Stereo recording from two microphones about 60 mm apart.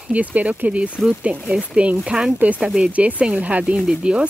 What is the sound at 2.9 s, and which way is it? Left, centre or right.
Speech, right.